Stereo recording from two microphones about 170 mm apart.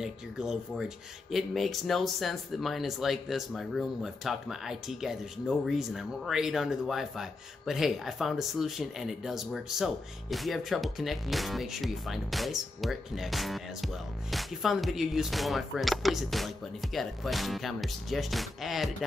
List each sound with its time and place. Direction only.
0.0 s speech: 5° right (ahead or behind)